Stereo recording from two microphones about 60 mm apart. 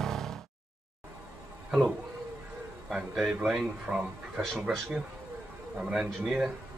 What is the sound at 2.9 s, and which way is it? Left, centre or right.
Speech, centre.